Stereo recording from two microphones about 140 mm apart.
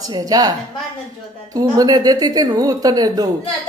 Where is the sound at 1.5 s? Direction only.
25° right (ahead or behind).